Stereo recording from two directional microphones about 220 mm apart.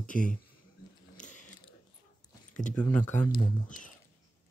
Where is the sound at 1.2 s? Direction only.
35° left (ahead or behind).